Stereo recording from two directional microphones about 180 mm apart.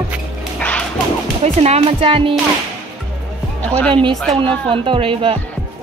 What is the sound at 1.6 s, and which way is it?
Speech, 35° right (ahead or behind).